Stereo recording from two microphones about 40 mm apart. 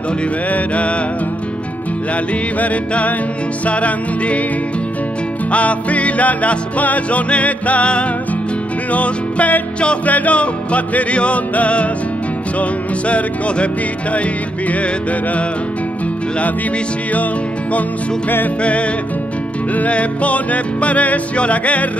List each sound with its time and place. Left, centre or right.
0.5 s music: left
2.6 s music: left
5.5 s music: left
18.6 s music: left